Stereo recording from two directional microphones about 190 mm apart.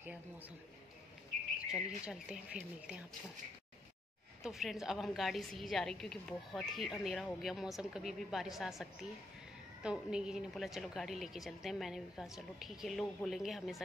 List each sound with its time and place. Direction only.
1.7 s a woman's voice: centre (ahead or behind)
4.4 s a woman's voice: centre (ahead or behind)
9.8 s a woman's voice: 5° right (ahead or behind)